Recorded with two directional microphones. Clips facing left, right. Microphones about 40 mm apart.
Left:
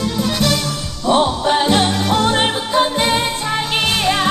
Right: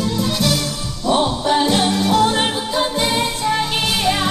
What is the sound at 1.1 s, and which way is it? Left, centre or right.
Music, left.